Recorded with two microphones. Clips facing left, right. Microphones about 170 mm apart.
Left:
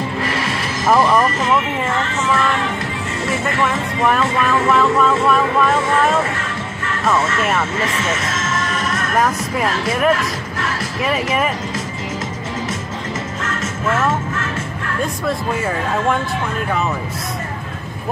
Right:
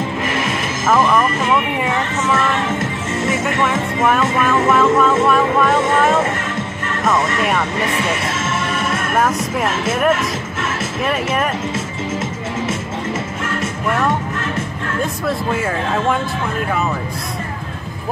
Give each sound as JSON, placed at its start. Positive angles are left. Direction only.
{"t": 0.8, "sound": "speech", "side_deg": 10}
{"t": 1.8, "sound": "speech", "side_deg": 0}
{"t": 3.6, "sound": "speech", "side_deg": 0}
{"t": 8.4, "sound": "music", "side_deg": -30}
{"t": 9.1, "sound": "speech", "side_deg": -5}
{"t": 15.2, "sound": "speech", "side_deg": -5}